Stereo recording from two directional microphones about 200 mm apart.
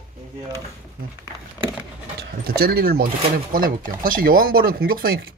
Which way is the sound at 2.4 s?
50° right (ahead or behind).